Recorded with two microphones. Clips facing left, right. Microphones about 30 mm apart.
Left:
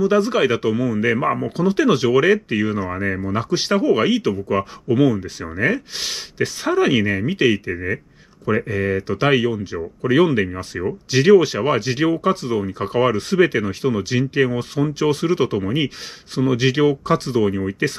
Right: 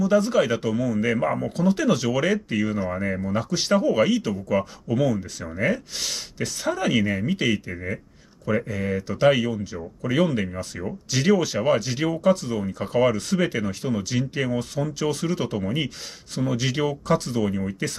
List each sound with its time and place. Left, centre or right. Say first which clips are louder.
0.0 s speech: left 3 dB; left